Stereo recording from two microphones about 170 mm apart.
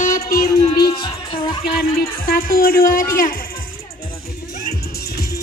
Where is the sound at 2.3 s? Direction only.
60° left (ahead or behind).